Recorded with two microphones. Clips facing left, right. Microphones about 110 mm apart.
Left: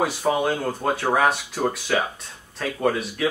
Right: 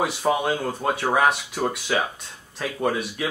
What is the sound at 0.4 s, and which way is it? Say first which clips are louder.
Speech: left 1 dB; centre (ahead or behind).